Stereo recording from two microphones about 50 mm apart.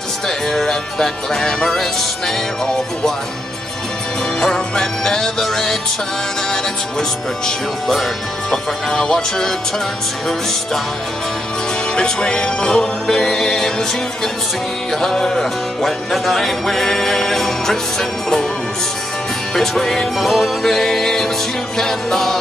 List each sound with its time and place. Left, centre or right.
0.5 s music: centre
4.4 s music: centre
11.9 s speech: centre
13.0 s music: centre
19.5 s music: centre